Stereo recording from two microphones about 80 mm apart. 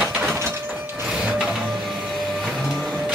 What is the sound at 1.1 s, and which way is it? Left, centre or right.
Music, centre.